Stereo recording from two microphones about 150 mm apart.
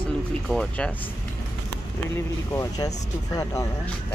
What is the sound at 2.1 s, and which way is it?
Speech, 20° left (ahead or behind).